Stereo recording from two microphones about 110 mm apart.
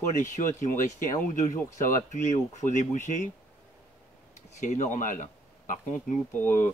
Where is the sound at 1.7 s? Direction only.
90° left.